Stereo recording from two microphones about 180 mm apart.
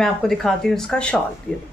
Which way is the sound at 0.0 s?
Centre (ahead or behind).